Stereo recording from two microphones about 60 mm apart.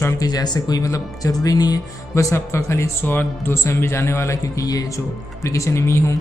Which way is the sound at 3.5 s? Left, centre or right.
Left.